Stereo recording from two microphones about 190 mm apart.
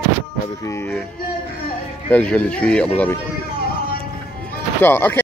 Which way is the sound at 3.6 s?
55° left (ahead or behind).